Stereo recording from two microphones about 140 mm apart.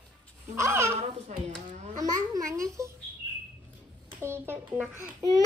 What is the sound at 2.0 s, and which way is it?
Babbling, 25° right (ahead or behind).